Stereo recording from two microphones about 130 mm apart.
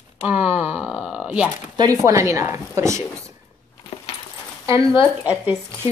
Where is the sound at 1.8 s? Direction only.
25° right (ahead or behind).